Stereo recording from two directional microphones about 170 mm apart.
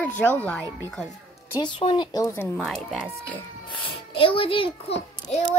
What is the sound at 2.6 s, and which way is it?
Speech, centre (ahead or behind).